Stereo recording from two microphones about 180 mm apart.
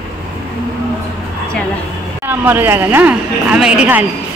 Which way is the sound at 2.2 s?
10° right (ahead or behind).